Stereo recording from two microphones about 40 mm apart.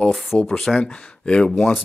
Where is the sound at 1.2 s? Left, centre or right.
Left.